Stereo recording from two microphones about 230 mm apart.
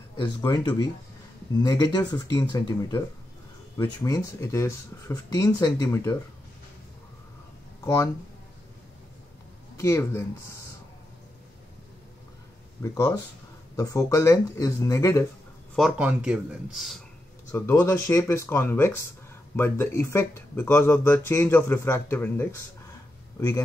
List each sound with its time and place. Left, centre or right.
0.2 s speech: centre
7.8 s speech: centre
9.8 s speech: centre
12.8 s speech: centre
15.7 s speech: centre
17.5 s speech: centre